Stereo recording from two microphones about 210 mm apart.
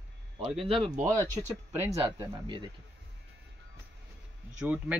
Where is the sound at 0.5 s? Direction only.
Centre (ahead or behind).